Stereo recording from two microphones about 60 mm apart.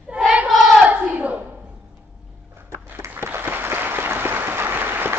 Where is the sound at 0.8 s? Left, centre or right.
Right.